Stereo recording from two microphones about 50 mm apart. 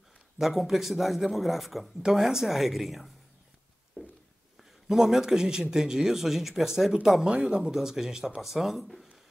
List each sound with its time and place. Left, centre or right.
0.4 s speech: centre
4.8 s speech: centre